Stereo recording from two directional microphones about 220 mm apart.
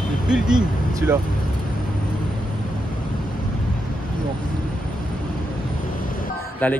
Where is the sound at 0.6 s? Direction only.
15° right (ahead or behind).